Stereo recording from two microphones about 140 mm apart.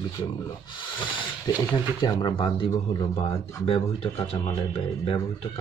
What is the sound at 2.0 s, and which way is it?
Speech, 30° left (ahead or behind).